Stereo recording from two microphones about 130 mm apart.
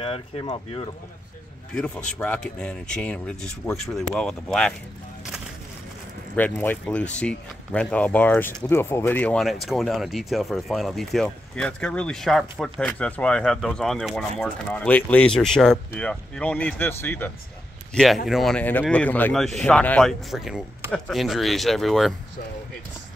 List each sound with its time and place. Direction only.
0.0 s speech: 45° left (ahead or behind)
1.8 s speech: 5° left (ahead or behind)
6.3 s speech: 15° left (ahead or behind)
9.4 s speech: centre (ahead or behind); by 17.3 s 15° left (ahead or behind)
17.9 s speech: centre (ahead or behind)
19.3 s speech: centre (ahead or behind)